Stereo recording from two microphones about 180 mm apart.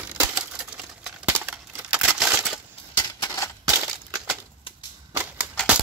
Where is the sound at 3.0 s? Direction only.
20° left (ahead or behind).